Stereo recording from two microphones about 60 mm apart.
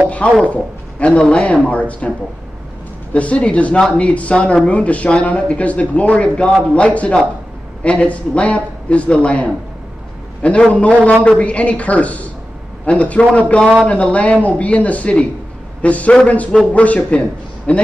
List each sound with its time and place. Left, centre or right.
0.4 s a man's voice: left